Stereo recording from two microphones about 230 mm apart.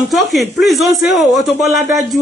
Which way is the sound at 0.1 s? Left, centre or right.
Centre.